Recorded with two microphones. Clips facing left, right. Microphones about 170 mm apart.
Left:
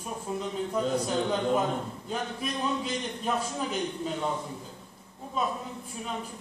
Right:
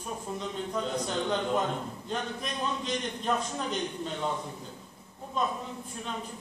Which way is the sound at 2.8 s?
5° left (ahead or behind).